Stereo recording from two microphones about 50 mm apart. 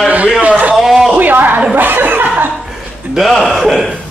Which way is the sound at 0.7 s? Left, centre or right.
Centre.